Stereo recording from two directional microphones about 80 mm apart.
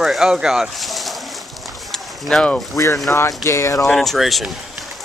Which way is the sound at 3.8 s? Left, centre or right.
Centre.